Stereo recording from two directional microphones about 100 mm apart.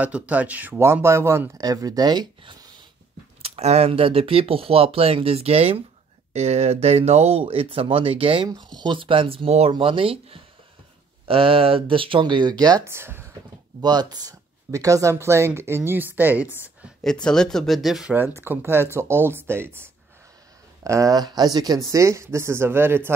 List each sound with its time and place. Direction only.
0.0 s speech: 15° right (ahead or behind)
1.6 s speech: 40° right (ahead or behind)
3.4 s speech: 90° right; by 8.5 s 65° right (ahead or behind)
8.5 s speech: 45° right (ahead or behind); by 9.7 s 80° right
9.7 s speech: 60° right (ahead or behind); by 12.8 s 40° right (ahead or behind)
12.8 s speech: 25° right (ahead or behind)
13.7 s speech: 45° right (ahead or behind); by 16.5 s 20° right (ahead or behind)
17.0 s speech: 5° left (ahead or behind)
18.1 s speech: 20° right (ahead or behind)